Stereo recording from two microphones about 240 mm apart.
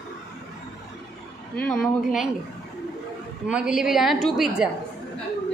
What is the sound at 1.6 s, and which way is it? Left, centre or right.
Speech, centre.